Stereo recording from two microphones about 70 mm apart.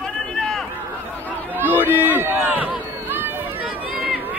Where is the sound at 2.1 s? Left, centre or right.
Right.